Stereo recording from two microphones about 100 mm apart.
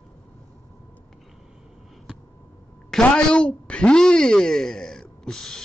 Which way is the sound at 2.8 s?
5° left (ahead or behind).